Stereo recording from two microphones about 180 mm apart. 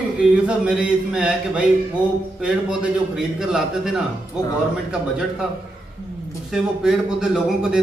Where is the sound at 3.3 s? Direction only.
5° right (ahead or behind).